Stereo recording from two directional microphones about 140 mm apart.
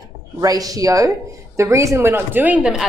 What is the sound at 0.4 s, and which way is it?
Speech, 25° right (ahead or behind).